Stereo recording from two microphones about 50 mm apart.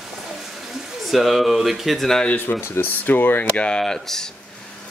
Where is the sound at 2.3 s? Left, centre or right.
Left.